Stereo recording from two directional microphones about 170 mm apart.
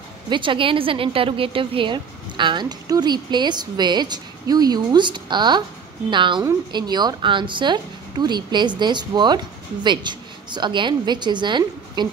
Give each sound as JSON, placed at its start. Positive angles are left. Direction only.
{"t": 0.3, "sound": "a woman's voice", "side_deg": -30}